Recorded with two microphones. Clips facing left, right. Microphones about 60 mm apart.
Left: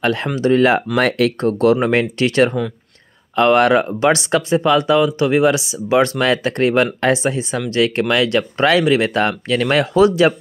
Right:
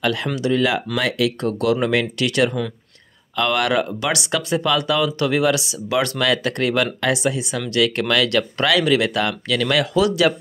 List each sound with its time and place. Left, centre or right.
0.0 s speech: left